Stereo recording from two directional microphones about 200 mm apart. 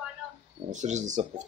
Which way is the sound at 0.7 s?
35° right (ahead or behind).